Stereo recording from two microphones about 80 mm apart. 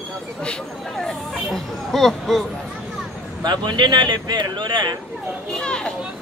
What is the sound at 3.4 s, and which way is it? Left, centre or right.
Speech, right.